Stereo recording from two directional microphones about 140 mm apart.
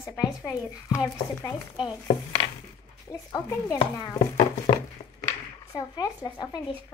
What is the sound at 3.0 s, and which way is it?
Speech, 20° left (ahead or behind).